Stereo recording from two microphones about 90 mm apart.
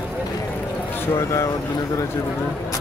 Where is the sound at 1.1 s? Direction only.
30° left (ahead or behind).